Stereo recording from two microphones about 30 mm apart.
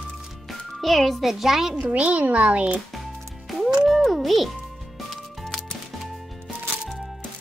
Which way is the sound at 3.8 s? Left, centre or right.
Centre.